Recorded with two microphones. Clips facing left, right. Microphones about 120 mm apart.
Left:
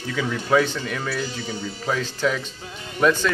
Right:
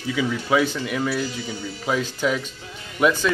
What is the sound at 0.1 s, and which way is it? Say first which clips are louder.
Speech: even; 10° right (ahead or behind).